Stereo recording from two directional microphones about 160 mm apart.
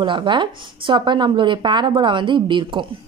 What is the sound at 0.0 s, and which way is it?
A woman's voice, 30° right (ahead or behind).